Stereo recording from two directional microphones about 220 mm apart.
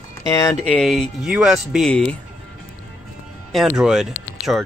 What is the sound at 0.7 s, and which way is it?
Speech, centre (ahead or behind).